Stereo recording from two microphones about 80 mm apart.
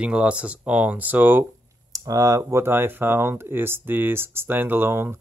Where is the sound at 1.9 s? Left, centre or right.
Right.